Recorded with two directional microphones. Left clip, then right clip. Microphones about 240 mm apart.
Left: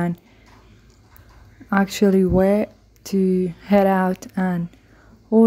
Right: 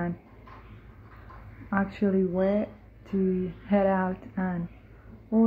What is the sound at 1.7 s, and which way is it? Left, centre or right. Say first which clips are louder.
A woman's voice: left 9 dB; left.